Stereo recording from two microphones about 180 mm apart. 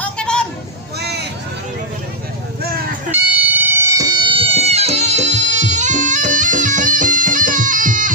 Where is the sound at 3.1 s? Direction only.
10° right (ahead or behind).